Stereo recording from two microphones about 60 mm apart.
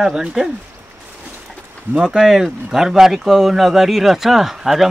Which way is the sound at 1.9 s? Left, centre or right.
Centre.